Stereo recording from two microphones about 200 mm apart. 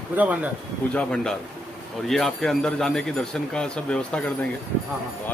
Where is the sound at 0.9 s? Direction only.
5° left (ahead or behind).